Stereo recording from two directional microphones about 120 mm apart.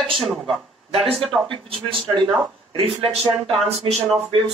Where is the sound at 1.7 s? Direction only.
45° right (ahead or behind).